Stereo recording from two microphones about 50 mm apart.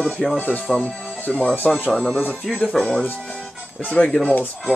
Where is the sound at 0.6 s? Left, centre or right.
Left.